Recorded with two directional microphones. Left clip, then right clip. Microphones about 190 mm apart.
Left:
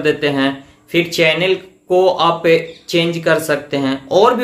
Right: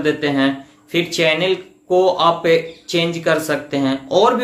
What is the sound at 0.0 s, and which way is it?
Speech, 15° left (ahead or behind).